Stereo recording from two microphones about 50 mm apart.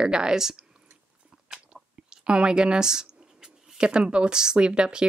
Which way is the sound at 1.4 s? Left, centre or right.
Centre.